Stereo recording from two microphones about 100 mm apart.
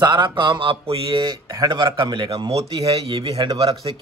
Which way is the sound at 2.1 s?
70° right (ahead or behind).